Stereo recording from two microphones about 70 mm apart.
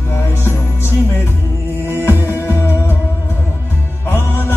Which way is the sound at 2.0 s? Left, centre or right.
Left.